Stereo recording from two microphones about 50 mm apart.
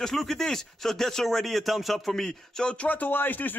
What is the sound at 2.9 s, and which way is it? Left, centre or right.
Speech, left.